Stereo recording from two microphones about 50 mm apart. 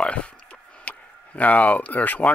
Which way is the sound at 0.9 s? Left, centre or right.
Left.